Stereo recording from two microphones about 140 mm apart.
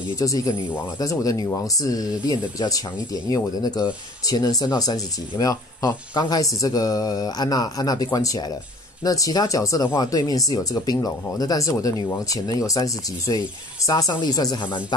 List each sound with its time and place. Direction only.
0.2 s speech: 25° left (ahead or behind)